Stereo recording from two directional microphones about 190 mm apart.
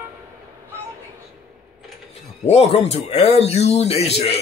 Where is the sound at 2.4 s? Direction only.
35° left (ahead or behind).